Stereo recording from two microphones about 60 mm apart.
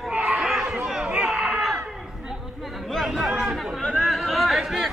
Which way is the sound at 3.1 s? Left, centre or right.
Centre.